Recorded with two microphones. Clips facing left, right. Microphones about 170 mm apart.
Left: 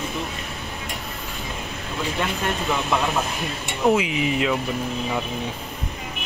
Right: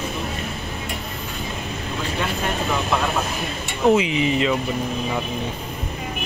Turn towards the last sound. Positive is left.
turn(degrees=5)  # may be behind; listen again after turning